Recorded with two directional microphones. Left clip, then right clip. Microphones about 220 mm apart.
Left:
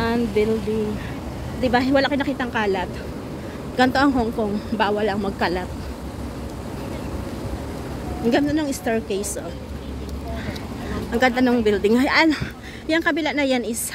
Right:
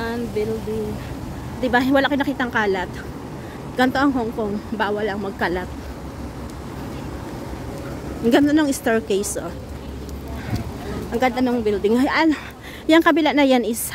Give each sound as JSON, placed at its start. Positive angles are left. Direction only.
{"t": 0.0, "sound": "a sound", "side_deg": 10}
{"t": 1.6, "sound": "speech", "side_deg": -20}
{"t": 8.3, "sound": "speech", "side_deg": -35}
{"t": 11.1, "sound": "speech", "side_deg": -10}
{"t": 12.8, "sound": "speech", "side_deg": -30}